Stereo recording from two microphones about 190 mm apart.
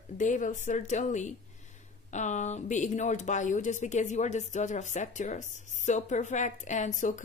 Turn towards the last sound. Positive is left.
turn(degrees=40)  # may be behind; listen again after turning